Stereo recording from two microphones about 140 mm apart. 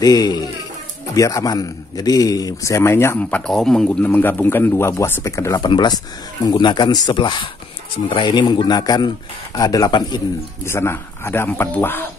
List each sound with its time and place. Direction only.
0.0 s a man's voice: 30° left (ahead or behind)
10.6 s speech: 15° left (ahead or behind)